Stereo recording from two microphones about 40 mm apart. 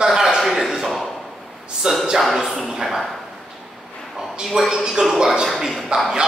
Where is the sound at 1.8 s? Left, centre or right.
Centre.